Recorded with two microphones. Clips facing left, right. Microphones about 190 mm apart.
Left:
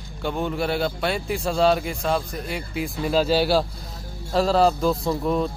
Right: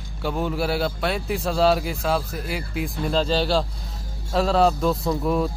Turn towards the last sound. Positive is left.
turn(degrees=0)  # may be behind; listen again after turning